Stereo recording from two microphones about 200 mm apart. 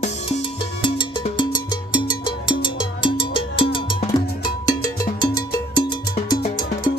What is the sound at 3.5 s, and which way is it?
Music, 25° left (ahead or behind).